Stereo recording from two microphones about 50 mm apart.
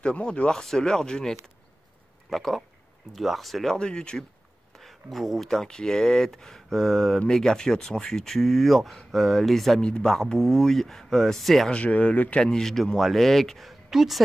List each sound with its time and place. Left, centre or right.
0.0 s a man's voice: left; by 3.7 s centre
3.7 s speech: centre
4.7 s speech: centre
9.8 s speech: centre
11.7 s speech: left
12.4 s a man's voice: centre